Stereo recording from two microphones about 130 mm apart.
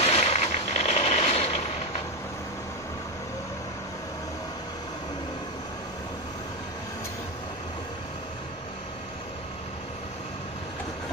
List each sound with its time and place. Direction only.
0.0 s vehicle: 55° left (ahead or behind)